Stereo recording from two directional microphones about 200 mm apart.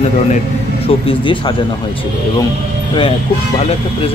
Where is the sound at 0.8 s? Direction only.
25° left (ahead or behind).